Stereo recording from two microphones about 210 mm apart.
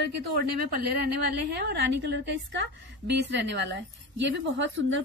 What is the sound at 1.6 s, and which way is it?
A woman's voice, 55° right (ahead or behind).